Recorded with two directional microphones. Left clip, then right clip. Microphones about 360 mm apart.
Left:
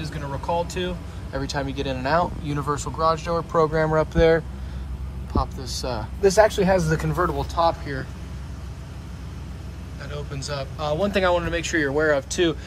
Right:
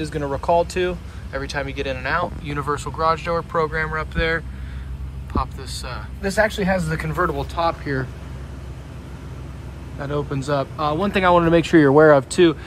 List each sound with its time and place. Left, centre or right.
0.0 s speech: centre
9.9 s speech: centre